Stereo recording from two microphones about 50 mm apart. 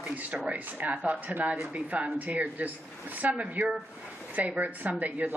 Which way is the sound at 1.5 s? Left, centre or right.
Right.